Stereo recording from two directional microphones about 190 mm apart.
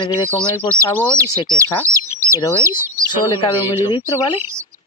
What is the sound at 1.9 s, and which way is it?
Chicken, 15° right (ahead or behind).